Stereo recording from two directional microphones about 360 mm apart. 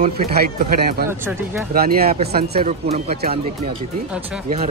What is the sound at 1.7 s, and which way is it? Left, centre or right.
Speech, right.